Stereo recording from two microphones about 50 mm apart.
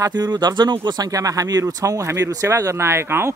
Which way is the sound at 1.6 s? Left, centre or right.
Right.